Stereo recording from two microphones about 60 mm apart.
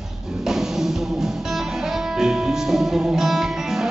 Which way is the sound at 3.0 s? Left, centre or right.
Centre.